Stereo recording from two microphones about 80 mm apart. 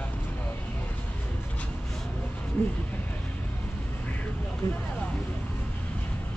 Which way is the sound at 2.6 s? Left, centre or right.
Left.